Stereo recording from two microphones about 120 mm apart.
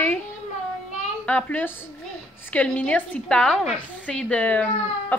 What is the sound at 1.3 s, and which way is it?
A woman's voice, 10° left (ahead or behind).